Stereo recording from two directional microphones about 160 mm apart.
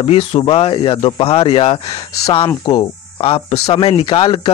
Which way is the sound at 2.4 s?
25° left (ahead or behind).